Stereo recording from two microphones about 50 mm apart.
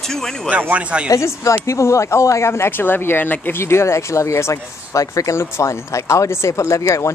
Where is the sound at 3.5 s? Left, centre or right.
Left.